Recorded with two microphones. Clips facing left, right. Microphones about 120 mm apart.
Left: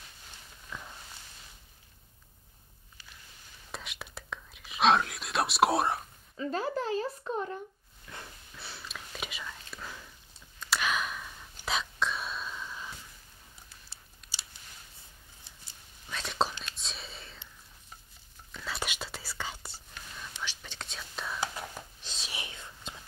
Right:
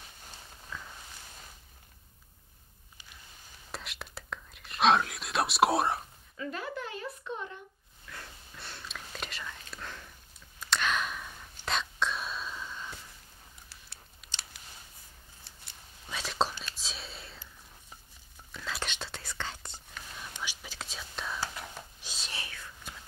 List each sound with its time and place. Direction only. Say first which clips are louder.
3.7 s whispering: even; centre (ahead or behind)
6.3 s a sound: left 5 dB; 30° left (ahead or behind)
8.1 s a sound: left 1 dB; 25° left (ahead or behind)
8.5 s whispering: even; 5° left (ahead or behind)
14.2 s scissors: even; 5° right (ahead or behind)
16.1 s whispering: even; centre (ahead or behind)
18.5 s whispering: left 1 dB; centre (ahead or behind)
20.2 s whispering: left 1 dB; 10° right (ahead or behind)
22.3 s whispering: left 1 dB; 20° left (ahead or behind)